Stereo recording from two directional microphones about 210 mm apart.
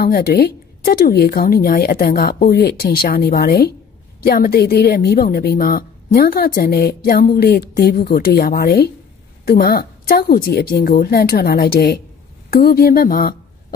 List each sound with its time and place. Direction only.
0.0 s a woman's voice: 45° left (ahead or behind)